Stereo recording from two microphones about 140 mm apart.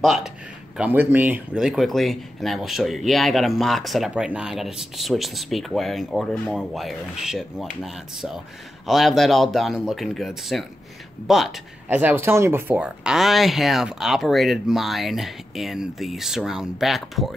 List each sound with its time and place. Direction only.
0.0 s speech: centre (ahead or behind)
0.7 s speech: 15° right (ahead or behind)
11.9 s speech: 10° right (ahead or behind)